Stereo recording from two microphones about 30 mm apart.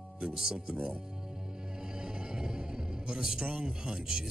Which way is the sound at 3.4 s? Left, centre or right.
Right.